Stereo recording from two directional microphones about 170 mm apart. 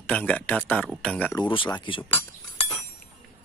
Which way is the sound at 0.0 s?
5° left (ahead or behind).